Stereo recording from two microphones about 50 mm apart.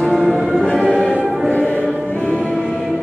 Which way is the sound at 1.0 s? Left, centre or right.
Left.